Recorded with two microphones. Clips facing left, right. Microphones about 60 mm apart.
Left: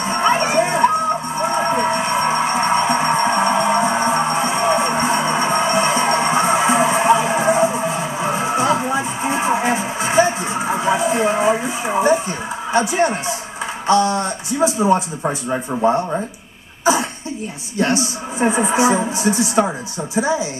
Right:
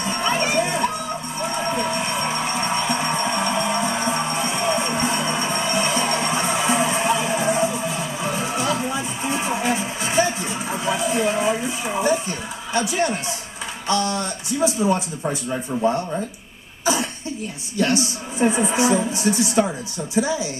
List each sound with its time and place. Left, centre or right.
0.0 s music: left
12.7 s speech: left
17.7 s speech: left